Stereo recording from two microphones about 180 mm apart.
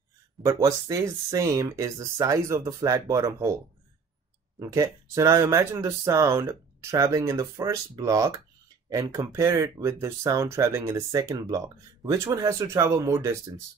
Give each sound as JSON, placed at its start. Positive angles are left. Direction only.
{"t": 0.4, "sound": "speech", "side_deg": -15}
{"t": 4.6, "sound": "speech", "side_deg": -15}